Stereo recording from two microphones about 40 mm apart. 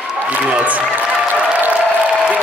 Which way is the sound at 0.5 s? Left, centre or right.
Right.